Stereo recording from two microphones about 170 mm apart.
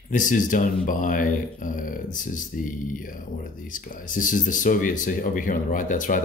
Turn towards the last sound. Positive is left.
turn(degrees=50)  # may be behind; listen again after turning